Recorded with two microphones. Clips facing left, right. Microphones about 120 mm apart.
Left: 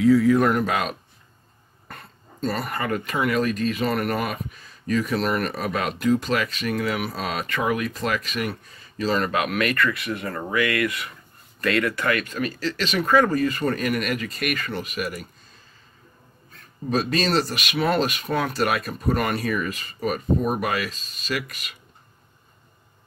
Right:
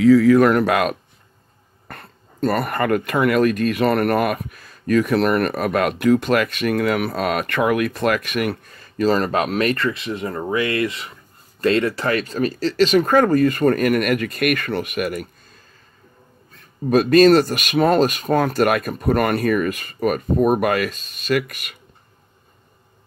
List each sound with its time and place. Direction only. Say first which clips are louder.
0.0 s speech: right 5 dB; 90° right; by 15.2 s 55° right (ahead or behind)
16.9 s speech: right 10 dB; 55° right (ahead or behind)